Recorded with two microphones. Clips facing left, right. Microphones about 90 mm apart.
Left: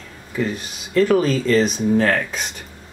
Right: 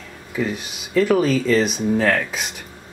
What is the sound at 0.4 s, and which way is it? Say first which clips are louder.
Speech: left 1 dB; centre (ahead or behind).